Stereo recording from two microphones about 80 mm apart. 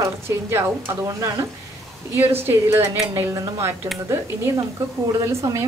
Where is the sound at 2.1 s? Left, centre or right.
Right.